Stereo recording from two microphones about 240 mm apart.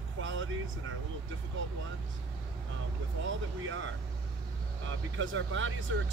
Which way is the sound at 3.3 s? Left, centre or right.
Right.